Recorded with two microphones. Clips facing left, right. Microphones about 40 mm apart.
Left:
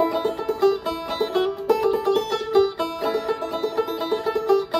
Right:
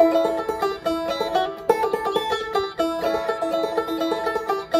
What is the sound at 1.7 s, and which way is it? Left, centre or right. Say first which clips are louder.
Music: left 1 dB; right.